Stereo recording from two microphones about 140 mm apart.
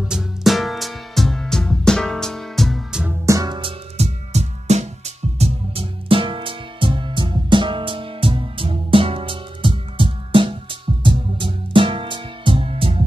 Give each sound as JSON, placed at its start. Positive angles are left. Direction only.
{"t": 0.1, "sound": "music", "side_deg": -5}
{"t": 3.3, "sound": "music", "side_deg": -25}
{"t": 4.0, "sound": "music", "side_deg": -50}